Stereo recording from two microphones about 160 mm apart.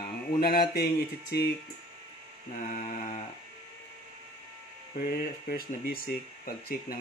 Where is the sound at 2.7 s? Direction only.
50° left (ahead or behind).